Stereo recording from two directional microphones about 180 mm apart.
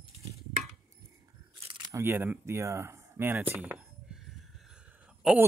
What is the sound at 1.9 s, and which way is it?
Speech, 15° right (ahead or behind).